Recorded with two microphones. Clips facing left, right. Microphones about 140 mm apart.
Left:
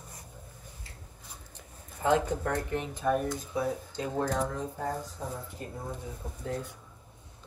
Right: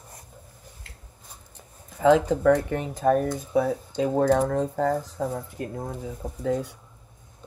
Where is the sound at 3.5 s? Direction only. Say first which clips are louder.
Right 8 dB; 70° right (ahead or behind).